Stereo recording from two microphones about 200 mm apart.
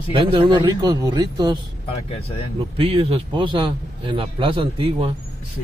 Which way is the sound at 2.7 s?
25° right (ahead or behind).